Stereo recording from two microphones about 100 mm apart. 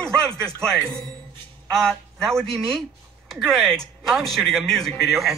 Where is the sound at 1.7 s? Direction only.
5° left (ahead or behind).